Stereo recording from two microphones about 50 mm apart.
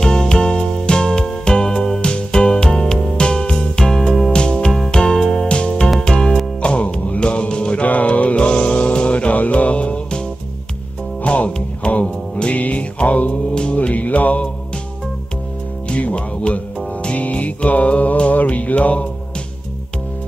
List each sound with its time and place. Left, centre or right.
0.0 s music: centre
11.2 s music: left
15.9 s music: left